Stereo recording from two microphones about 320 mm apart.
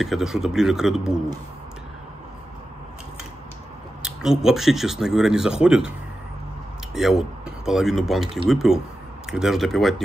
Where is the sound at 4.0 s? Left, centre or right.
Centre.